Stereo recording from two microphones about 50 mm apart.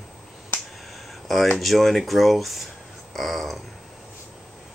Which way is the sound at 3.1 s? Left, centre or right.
Centre.